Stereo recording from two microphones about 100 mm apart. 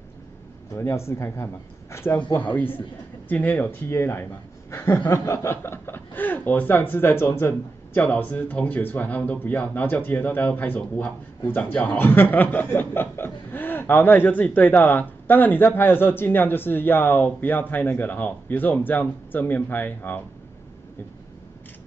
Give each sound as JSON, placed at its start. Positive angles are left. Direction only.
{"t": 0.7, "sound": "speech", "side_deg": 25}